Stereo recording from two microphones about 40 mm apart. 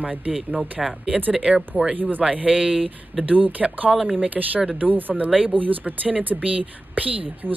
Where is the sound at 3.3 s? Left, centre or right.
Right.